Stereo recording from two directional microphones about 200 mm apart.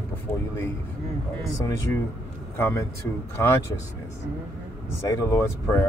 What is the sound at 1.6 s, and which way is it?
Speech, 15° left (ahead or behind).